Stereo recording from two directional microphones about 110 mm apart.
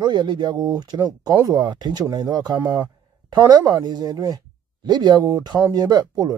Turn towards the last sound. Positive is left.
turn(degrees=-35)  # may be behind; listen again after turning